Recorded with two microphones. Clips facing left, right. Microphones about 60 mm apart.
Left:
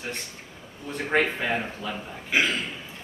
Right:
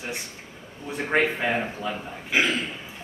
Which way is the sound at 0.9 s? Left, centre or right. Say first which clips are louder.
Right 1 dB; centre.